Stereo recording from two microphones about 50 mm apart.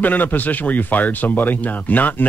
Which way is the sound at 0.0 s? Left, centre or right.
Left.